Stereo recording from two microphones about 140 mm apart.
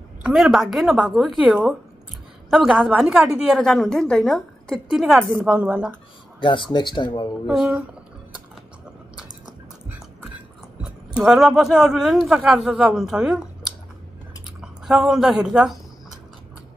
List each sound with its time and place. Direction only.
0.2 s a woman's voice: centre (ahead or behind)
6.4 s speech: 35° left (ahead or behind)
7.4 s a woman's voice: 5° right (ahead or behind)
10.8 s speech: 5° right (ahead or behind)